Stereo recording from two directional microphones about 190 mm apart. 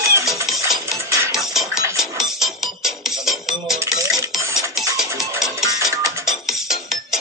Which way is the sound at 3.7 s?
15° right (ahead or behind).